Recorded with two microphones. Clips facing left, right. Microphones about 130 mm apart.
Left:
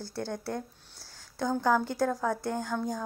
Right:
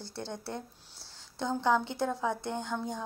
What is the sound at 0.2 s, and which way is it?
Speech, 25° right (ahead or behind).